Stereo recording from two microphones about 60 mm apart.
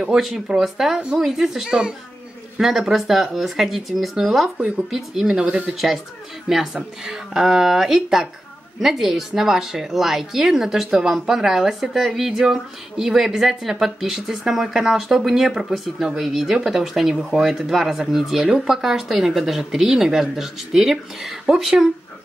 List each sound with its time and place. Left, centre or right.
0.0 s a woman's voice: centre
5.4 s a woman's voice: centre
6.7 s speech: centre